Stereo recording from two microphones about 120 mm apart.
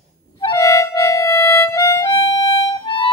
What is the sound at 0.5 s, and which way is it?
Music, 25° left (ahead or behind).